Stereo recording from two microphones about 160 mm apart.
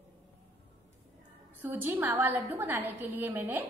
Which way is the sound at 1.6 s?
10° right (ahead or behind).